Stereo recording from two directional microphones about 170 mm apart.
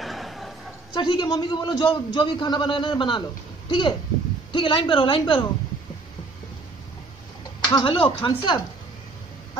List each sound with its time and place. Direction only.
0.0 s a sound: centre (ahead or behind)
0.9 s a man's voice: 30° left (ahead or behind)
7.7 s a man's voice: 30° left (ahead or behind)